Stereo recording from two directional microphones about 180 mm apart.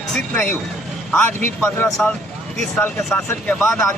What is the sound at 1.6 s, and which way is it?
Speech, 10° left (ahead or behind).